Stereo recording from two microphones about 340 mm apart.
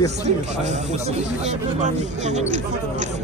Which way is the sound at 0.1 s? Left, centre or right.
Centre.